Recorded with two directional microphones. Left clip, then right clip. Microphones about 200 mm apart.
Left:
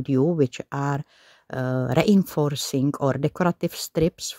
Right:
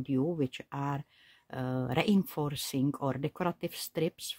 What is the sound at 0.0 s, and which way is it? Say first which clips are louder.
Speech: left 10 dB; 30° left (ahead or behind).